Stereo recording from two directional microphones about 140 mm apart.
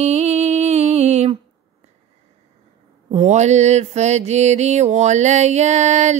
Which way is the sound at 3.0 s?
50° right (ahead or behind).